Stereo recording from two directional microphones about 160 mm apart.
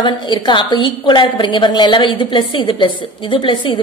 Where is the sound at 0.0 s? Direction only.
30° left (ahead or behind).